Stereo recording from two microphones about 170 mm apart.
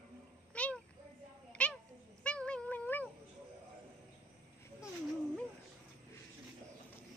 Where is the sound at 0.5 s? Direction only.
5° left (ahead or behind).